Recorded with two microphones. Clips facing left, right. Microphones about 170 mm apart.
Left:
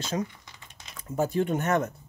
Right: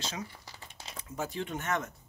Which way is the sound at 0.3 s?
35° right (ahead or behind).